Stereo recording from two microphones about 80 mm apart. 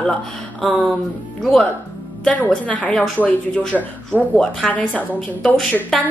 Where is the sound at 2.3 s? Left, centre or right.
Centre.